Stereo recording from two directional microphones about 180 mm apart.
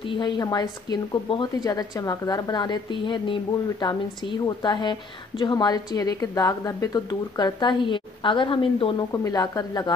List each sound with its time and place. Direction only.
0.1 s a woman's voice: 25° left (ahead or behind)